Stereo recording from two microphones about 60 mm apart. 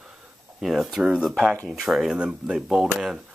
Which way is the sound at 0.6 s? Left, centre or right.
Centre.